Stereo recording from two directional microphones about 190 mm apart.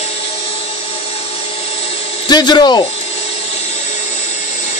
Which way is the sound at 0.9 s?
30° left (ahead or behind).